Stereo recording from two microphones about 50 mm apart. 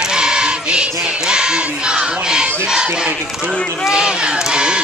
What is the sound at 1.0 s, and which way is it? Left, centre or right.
Battle cry, centre.